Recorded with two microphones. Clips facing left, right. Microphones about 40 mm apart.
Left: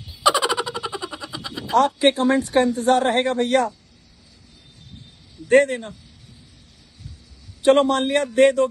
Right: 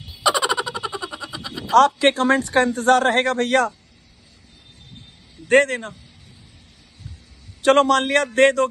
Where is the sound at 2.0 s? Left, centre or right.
Right.